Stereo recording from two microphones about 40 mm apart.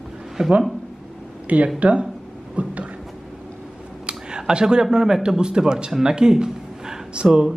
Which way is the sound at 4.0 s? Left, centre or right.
Right.